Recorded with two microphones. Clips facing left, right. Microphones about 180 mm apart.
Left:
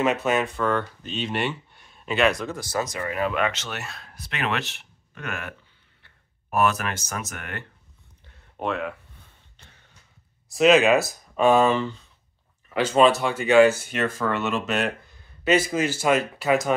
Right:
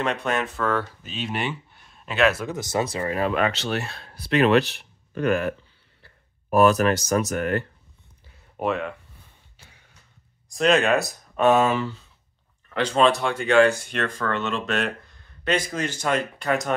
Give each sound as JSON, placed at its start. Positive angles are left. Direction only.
{"t": 0.0, "sound": "speech", "side_deg": 5}
{"t": 2.4, "sound": "speech", "side_deg": -20}
{"t": 8.5, "sound": "speech", "side_deg": 0}
{"t": 9.6, "sound": "a sound", "side_deg": -5}
{"t": 10.5, "sound": "speech", "side_deg": 5}
{"t": 12.7, "sound": "speech", "side_deg": 5}